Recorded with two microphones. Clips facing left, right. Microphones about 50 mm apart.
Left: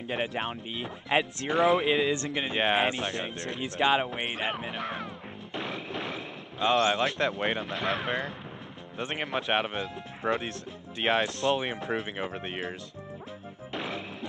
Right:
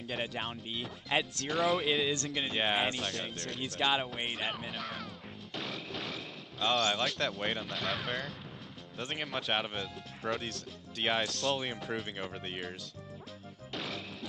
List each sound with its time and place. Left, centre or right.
0.5 s speech: centre
5.5 s a sound: centre
7.2 s speech: left
13.7 s music: centre